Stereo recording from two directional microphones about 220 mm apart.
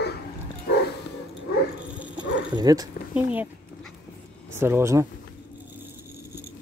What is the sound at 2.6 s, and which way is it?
Speech, 15° right (ahead or behind).